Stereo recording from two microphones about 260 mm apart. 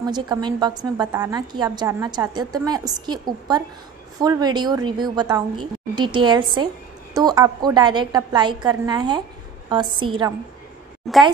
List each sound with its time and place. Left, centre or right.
0.0 s a woman's voice: centre
11.1 s a woman's voice: centre